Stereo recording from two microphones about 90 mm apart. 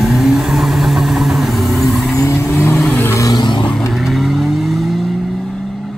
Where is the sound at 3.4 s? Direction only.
60° left (ahead or behind).